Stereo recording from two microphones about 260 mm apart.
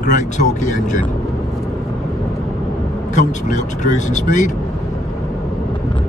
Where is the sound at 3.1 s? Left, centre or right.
Left.